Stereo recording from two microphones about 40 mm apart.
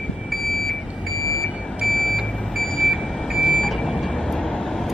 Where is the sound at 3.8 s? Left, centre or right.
Centre.